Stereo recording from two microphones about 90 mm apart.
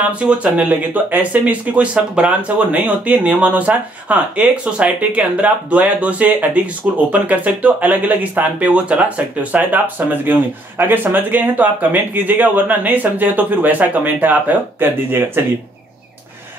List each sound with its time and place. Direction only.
0.1 s speech: 10° right (ahead or behind)